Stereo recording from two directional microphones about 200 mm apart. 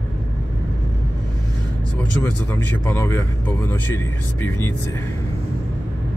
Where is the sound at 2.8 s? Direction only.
10° left (ahead or behind).